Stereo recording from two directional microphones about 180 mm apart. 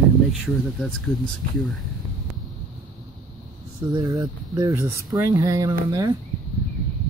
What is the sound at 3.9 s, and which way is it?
Speech, 20° right (ahead or behind).